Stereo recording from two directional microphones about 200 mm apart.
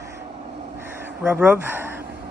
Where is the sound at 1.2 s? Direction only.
10° right (ahead or behind).